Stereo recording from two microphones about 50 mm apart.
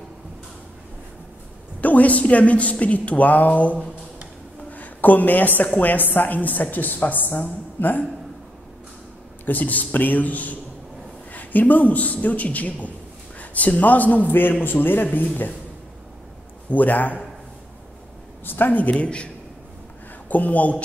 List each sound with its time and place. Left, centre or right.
1.8 s a woman's voice: left
9.5 s a man's voice: left
16.7 s a man's voice: left
18.4 s a man's voice: left
18.9 s a woman's voice: left
20.2 s a man's voice: left